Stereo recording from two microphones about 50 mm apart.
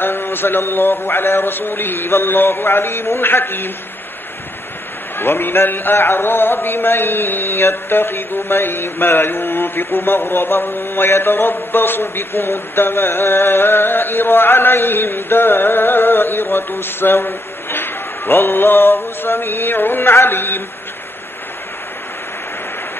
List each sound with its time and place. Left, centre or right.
0.0 s a man's voice: left
5.1 s a man's voice: left